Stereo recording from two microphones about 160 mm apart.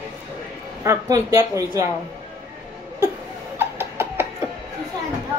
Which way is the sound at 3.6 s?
15° right (ahead or behind).